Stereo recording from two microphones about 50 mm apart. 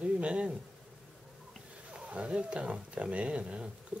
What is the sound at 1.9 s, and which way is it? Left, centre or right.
Speech, right.